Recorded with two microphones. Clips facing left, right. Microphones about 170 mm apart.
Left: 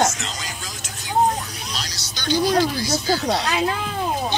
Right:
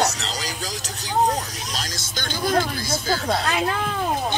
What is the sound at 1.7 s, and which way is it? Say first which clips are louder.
Music: right 1 dB; 45° right (ahead or behind).